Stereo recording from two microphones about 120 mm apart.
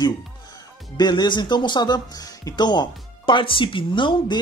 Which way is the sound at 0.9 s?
35° left (ahead or behind).